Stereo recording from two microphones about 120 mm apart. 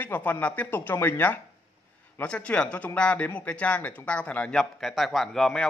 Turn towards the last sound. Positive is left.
turn(degrees=5)  # may be behind; listen again after turning